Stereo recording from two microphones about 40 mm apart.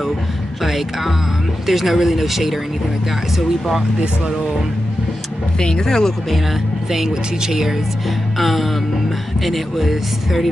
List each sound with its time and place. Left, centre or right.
0.6 s speech: centre
5.6 s speech: centre
6.9 s speech: centre
8.4 s speech: centre